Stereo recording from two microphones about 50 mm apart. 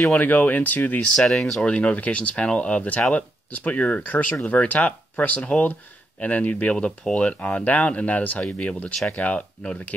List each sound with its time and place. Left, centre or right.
0.2 s speech: left
1.1 s speech: centre
1.6 s speech: left